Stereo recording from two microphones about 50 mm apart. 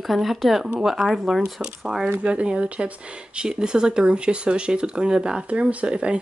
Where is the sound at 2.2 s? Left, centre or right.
Right.